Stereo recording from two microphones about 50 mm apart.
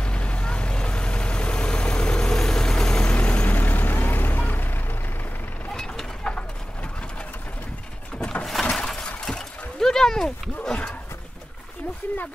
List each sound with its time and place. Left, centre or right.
0.0 s vehicle: left
3.2 s vehicle: left
5.8 s mechanisms: centre
8.6 s a sound: centre